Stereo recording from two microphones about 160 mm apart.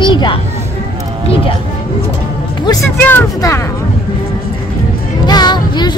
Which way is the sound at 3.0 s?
15° left (ahead or behind).